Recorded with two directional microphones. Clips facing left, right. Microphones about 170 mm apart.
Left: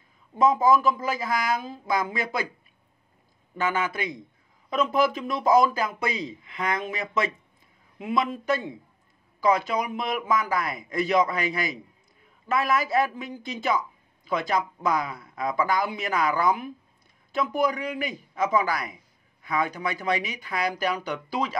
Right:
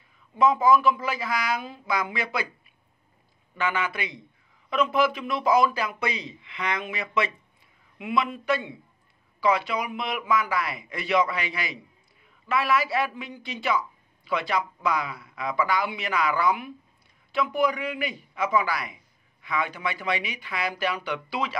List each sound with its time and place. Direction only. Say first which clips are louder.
0.4 s a man's voice: even; 45° left (ahead or behind)
3.5 s a man's voice: left 1 dB; 45° left (ahead or behind)